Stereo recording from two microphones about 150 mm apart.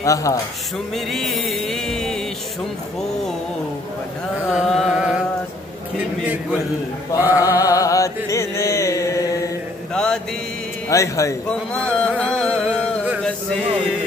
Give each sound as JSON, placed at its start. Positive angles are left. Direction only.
{"t": 0.0, "sound": "a man's voice", "side_deg": 20}
{"t": 1.1, "sound": "music", "side_deg": 0}
{"t": 4.5, "sound": "carnatic music", "side_deg": 0}
{"t": 7.2, "sound": "a sound", "side_deg": -10}
{"t": 7.4, "sound": "music", "side_deg": 20}
{"t": 9.9, "sound": "mantra", "side_deg": 5}
{"t": 10.9, "sound": "a man's voice", "side_deg": 20}
{"t": 11.4, "sound": "speech", "side_deg": 5}
{"t": 12.2, "sound": "music", "side_deg": 5}